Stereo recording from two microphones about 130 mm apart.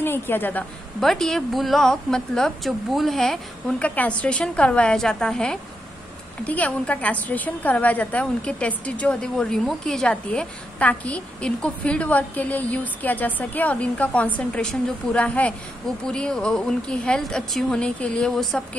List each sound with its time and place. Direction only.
0.0 s a woman's voice: 15° left (ahead or behind)
1.0 s a woman's voice: 5° left (ahead or behind)